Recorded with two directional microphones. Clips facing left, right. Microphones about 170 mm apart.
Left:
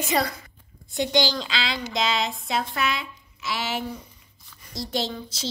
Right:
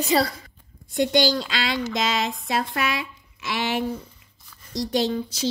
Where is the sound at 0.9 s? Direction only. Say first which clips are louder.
Right 3 dB; 50° right (ahead or behind).